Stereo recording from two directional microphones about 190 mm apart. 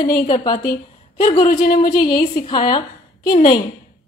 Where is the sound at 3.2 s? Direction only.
45° left (ahead or behind).